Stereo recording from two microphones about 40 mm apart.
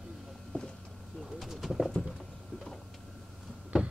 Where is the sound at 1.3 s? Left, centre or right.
Centre.